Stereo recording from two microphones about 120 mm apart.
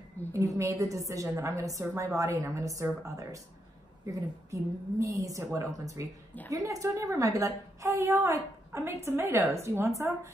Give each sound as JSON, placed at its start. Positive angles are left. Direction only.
{"t": 0.3, "sound": "a woman's voice", "side_deg": -25}